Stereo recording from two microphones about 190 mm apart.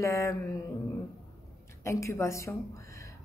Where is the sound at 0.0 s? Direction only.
15° left (ahead or behind).